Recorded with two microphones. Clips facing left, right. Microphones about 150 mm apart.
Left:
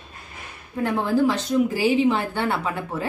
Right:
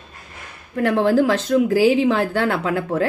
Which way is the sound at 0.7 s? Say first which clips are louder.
Right 5 dB; 80° right.